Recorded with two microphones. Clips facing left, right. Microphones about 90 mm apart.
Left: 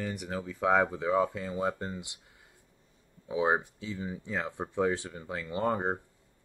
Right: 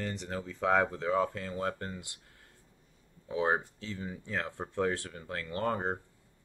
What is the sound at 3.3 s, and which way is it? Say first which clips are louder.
Speech: left 2 dB; 15° left (ahead or behind).